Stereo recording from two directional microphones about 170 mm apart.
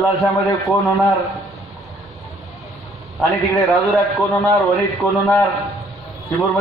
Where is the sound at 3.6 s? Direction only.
Centre (ahead or behind).